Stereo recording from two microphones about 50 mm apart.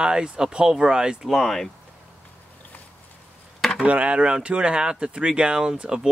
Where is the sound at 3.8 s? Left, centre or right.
Right.